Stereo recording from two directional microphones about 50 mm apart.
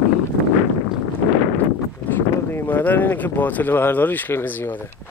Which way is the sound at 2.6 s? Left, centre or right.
Left.